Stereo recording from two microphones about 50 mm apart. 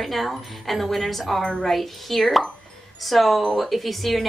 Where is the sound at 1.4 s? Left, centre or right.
Centre.